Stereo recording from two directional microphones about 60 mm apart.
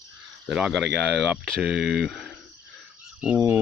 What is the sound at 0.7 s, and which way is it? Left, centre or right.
Speech, centre.